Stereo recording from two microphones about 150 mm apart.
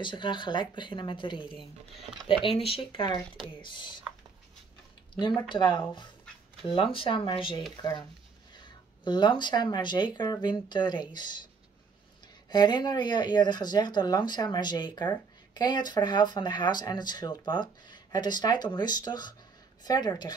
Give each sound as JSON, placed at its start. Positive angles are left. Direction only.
{"t": 0.0, "sound": "speech", "side_deg": 35}
{"t": 5.2, "sound": "speech", "side_deg": 35}
{"t": 8.6, "sound": "speech", "side_deg": 30}
{"t": 12.4, "sound": "speech", "side_deg": 30}